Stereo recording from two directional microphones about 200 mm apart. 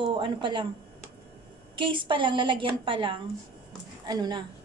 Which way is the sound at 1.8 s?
25° right (ahead or behind).